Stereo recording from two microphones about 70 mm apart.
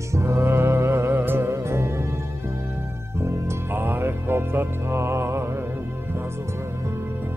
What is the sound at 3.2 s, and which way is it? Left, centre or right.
Music, right.